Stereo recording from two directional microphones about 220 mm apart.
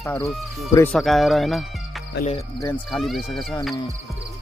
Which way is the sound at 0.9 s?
Centre (ahead or behind).